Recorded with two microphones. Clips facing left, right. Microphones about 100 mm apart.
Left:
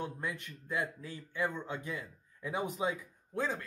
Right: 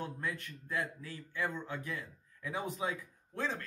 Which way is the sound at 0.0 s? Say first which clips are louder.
Left 1 dB; 20° left (ahead or behind).